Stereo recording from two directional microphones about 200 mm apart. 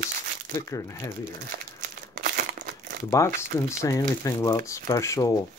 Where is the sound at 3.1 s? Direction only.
15° left (ahead or behind).